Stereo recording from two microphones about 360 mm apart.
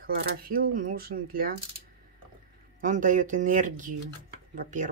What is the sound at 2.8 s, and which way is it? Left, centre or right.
Speech, right.